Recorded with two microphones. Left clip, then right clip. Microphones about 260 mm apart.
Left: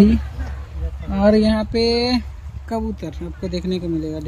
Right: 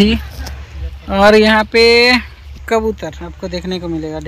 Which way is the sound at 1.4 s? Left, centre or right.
Centre.